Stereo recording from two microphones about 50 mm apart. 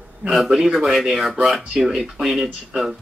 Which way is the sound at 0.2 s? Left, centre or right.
Centre.